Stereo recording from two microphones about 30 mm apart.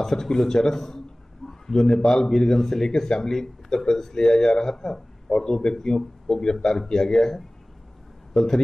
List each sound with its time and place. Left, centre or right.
0.0 s speech: centre
1.5 s a sound: centre
1.9 s speech: left